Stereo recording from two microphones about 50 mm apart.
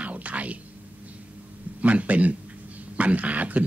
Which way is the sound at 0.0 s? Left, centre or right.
Right.